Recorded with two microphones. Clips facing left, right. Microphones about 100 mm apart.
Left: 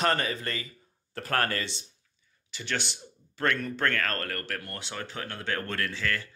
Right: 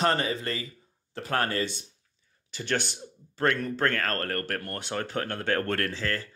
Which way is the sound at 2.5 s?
45° right (ahead or behind).